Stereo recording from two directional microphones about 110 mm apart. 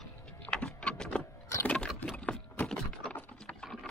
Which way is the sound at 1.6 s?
10° left (ahead or behind).